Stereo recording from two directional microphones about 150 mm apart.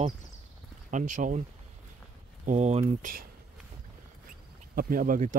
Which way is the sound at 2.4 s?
50° right (ahead or behind).